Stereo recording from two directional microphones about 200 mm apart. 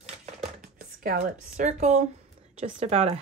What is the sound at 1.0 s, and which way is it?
Speech, 40° right (ahead or behind).